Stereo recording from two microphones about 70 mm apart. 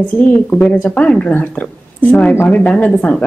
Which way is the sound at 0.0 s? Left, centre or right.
Centre.